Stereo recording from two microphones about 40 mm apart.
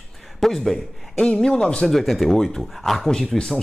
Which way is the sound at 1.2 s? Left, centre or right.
Left.